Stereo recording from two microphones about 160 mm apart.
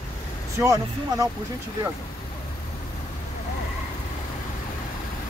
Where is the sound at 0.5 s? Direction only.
20° right (ahead or behind).